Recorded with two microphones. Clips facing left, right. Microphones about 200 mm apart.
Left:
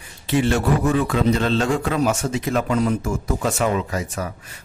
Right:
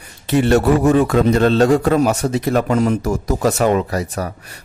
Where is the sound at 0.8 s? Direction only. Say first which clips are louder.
Right 5 dB; 45° right (ahead or behind).